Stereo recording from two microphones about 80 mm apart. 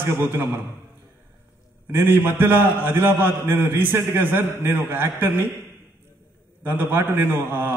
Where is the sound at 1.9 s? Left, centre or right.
Right.